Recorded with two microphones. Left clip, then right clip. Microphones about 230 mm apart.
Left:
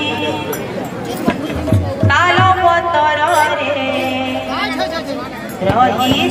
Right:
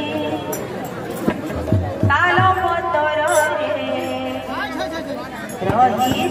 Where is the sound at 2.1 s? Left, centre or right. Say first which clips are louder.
Left 4 dB; left.